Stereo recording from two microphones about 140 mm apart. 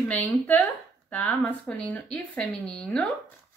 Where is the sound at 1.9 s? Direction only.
5° left (ahead or behind).